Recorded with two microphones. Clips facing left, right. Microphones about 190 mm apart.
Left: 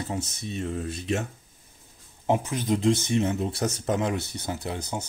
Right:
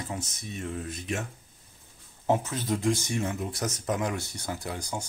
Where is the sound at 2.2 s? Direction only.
15° left (ahead or behind).